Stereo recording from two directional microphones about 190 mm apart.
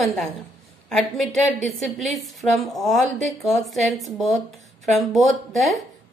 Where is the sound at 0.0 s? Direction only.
Centre (ahead or behind).